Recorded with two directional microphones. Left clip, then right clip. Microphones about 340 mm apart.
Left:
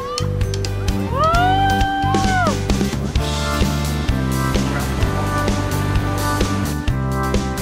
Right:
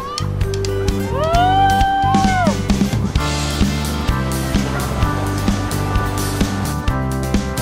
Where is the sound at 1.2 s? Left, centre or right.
Centre.